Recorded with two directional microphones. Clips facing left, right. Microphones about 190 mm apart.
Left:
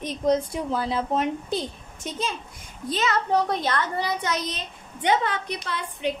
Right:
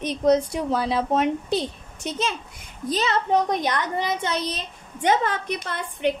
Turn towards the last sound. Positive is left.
turn(degrees=-50)  # may be behind; listen again after turning